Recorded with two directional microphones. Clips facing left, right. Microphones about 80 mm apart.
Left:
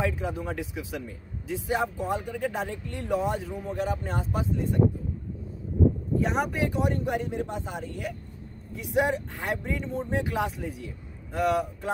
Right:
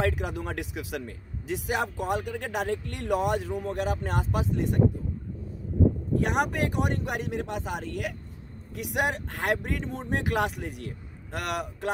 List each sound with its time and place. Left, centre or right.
0.0 s speech: right
6.1 s speech: right
8.7 s speech: right